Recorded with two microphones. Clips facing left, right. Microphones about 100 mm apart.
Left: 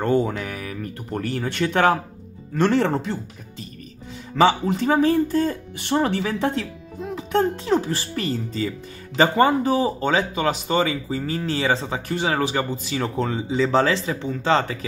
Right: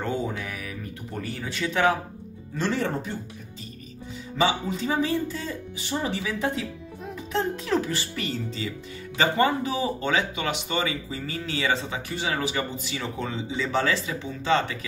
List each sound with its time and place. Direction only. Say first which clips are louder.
0.0 s speech: left 8 dB; 60° left (ahead or behind); by 3.2 s 85° left
4.4 s speech: left 7 dB; 65° left (ahead or behind)
7.5 s speech: left 4 dB; 30° left (ahead or behind)
12.1 s speech: left 6 dB; 50° left (ahead or behind)